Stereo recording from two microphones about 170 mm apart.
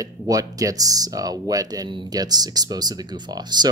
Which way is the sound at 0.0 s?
20° right (ahead or behind).